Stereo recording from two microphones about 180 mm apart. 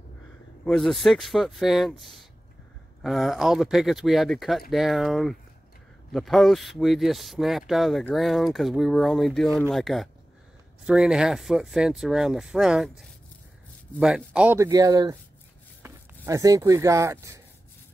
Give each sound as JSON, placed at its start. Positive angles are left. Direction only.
{"t": 0.7, "sound": "speech", "side_deg": 0}